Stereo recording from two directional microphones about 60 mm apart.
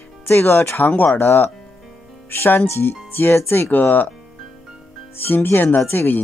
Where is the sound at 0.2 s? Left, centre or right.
Left.